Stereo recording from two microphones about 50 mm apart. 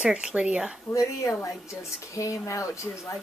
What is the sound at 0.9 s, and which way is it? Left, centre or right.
A woman's voice, left.